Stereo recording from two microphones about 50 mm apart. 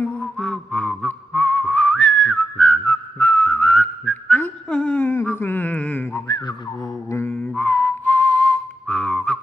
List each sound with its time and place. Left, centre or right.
0.0 s music: left
0.4 s a sound: centre
1.0 s whistling: left
2.6 s whistling: left
3.4 s whistling: left
4.6 s humming: left
5.1 s a sound: left
7.1 s mantra: left
7.5 s whistling: left